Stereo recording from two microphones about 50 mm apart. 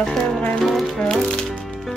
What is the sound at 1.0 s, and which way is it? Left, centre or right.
Speech, centre.